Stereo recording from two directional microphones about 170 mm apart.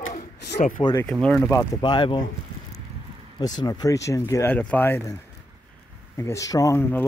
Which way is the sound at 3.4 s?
25° left (ahead or behind).